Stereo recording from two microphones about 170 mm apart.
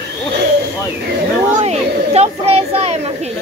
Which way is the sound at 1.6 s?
40° right (ahead or behind).